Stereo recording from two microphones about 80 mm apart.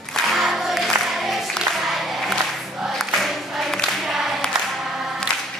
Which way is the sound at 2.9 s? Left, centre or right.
Centre.